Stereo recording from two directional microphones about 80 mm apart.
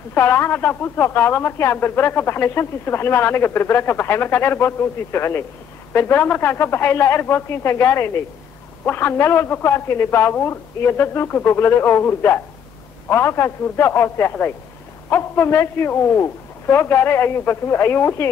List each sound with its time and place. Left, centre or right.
0.1 s speech: left